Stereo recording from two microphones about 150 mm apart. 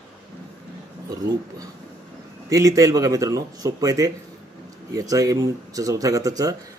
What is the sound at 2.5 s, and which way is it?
Speech, 25° right (ahead or behind).